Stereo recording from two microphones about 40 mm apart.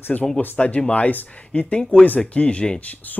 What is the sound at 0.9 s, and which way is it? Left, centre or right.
Speech, left.